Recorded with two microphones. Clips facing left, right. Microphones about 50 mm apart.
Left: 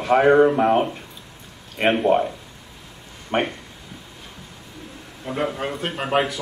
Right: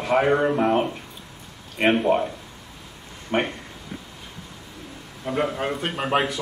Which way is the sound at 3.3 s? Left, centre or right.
Centre.